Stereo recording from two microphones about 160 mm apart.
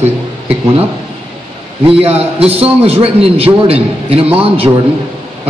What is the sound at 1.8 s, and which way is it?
A man's voice, 35° right (ahead or behind).